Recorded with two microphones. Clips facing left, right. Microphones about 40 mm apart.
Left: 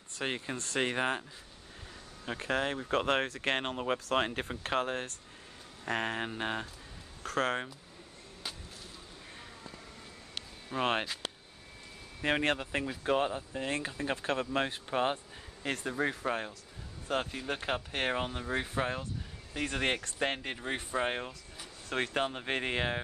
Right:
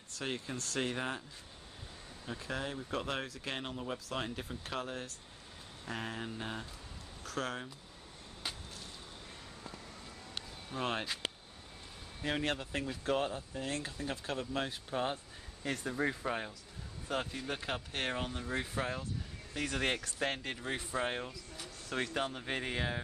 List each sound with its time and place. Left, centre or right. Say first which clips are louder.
0.1 s speech: left 4 dB; left
2.2 s speech: left 7 dB; left
10.7 s speech: left 6 dB; left
12.2 s speech: left 5 dB; left
21.8 s speech: left 4 dB; left